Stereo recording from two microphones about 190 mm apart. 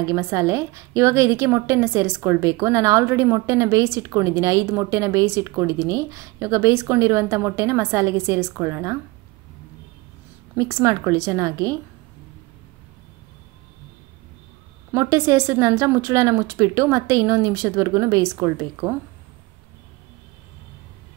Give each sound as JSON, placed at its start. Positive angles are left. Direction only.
{"t": 0.0, "sound": "a woman's voice", "side_deg": -15}
{"t": 10.6, "sound": "a woman's voice", "side_deg": -15}
{"t": 14.9, "sound": "a woman's voice", "side_deg": -15}